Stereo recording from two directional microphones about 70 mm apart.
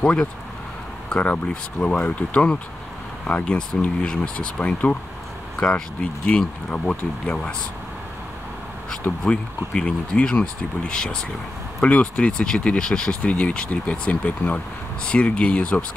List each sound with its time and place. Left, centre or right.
0.0 s speech: centre
9.2 s speech: centre